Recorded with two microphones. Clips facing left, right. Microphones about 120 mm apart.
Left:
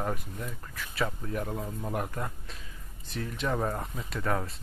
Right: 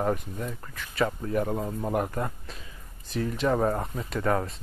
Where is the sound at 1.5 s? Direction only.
25° right (ahead or behind).